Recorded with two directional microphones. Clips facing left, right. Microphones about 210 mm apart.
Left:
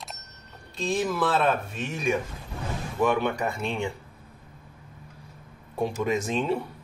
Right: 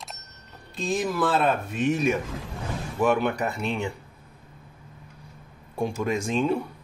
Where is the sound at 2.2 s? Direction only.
90° right.